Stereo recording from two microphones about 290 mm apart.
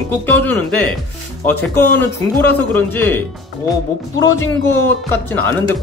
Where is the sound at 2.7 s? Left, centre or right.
Centre.